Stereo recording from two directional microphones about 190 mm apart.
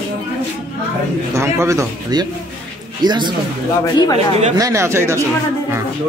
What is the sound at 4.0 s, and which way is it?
Speech, 20° left (ahead or behind).